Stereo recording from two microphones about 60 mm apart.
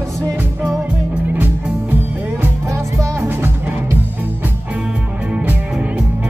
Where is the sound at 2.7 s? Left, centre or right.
Right.